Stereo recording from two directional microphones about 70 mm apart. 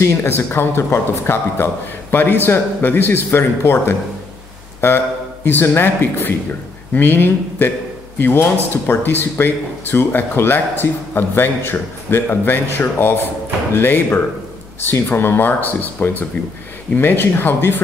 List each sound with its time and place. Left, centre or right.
0.0 s speech: left